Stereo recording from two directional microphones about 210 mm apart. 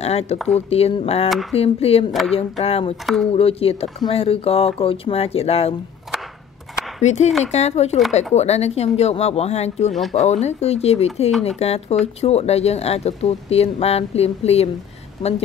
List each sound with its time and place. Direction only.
0.0 s speech: 30° left (ahead or behind)
0.4 s speech: centre (ahead or behind)
0.7 s speech: 30° left (ahead or behind)
7.0 s speech: 35° left (ahead or behind)